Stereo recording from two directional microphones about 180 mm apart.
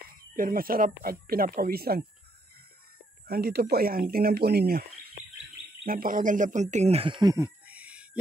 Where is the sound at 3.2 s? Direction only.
60° right (ahead or behind); by 7.5 s 20° right (ahead or behind).